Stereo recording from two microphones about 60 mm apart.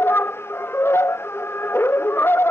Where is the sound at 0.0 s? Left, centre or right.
Left.